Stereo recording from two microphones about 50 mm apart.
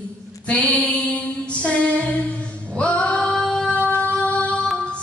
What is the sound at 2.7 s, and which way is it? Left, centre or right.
Music, left.